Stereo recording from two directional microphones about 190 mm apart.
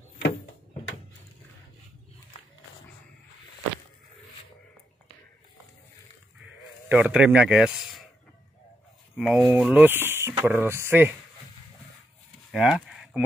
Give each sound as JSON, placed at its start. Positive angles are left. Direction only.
{"t": 6.4, "sound": "sheep", "side_deg": -5}
{"t": 9.1, "sound": "speech", "side_deg": 0}
{"t": 12.4, "sound": "livestock", "side_deg": -5}